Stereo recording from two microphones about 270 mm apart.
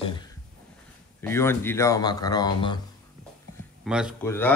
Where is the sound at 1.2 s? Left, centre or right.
Centre.